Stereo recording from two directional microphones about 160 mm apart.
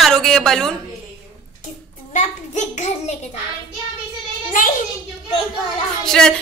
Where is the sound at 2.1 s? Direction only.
45° left (ahead or behind).